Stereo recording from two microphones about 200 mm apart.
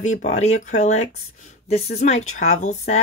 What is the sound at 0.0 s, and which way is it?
Speech, 35° left (ahead or behind).